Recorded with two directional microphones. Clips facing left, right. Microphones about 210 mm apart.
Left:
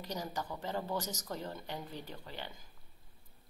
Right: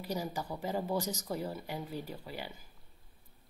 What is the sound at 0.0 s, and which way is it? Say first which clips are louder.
A woman's voice: right 3 dB; 10° right (ahead or behind).